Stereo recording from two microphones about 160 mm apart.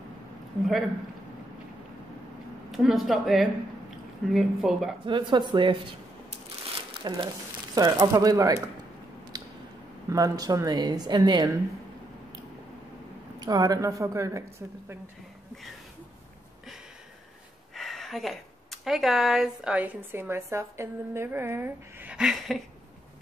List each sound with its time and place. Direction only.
2.7 s speech: centre (ahead or behind)
5.0 s a woman's voice: 30° right (ahead or behind)
6.9 s crumpling: 30° right (ahead or behind)
7.7 s a woman's voice: 25° right (ahead or behind)
10.0 s a woman's voice: 20° right (ahead or behind)
13.4 s a woman's voice: 25° right (ahead or behind)
17.7 s speech: centre (ahead or behind)